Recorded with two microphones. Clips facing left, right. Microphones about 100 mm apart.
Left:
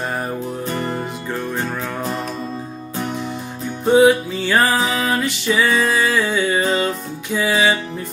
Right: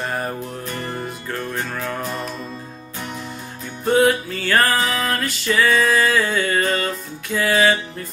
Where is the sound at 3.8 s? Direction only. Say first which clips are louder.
Left 4 dB; 10° left (ahead or behind).